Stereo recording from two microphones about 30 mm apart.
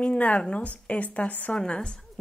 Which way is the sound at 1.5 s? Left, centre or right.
Left.